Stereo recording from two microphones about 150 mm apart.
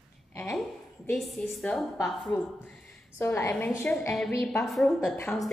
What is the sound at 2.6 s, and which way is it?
A woman's voice, 10° left (ahead or behind).